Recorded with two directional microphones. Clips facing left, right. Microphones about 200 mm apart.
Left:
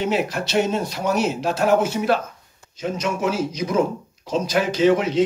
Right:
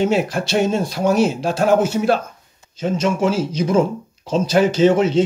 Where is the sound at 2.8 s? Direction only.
30° right (ahead or behind).